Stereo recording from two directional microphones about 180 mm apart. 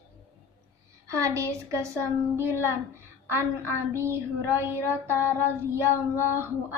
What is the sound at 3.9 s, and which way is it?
Child singing, 15° right (ahead or behind).